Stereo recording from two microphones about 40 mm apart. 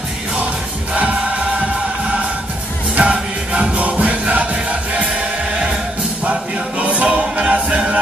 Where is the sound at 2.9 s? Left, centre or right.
Right.